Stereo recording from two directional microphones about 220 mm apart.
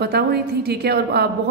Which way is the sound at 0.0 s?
45° right (ahead or behind).